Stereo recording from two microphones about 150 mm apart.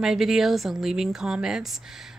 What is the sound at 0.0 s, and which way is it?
A woman's voice, centre (ahead or behind).